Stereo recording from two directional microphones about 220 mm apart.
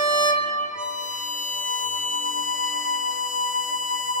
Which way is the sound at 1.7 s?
35° left (ahead or behind).